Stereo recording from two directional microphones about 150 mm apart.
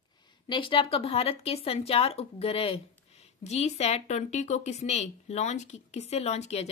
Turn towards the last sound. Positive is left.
turn(degrees=45)  # may be behind; listen again after turning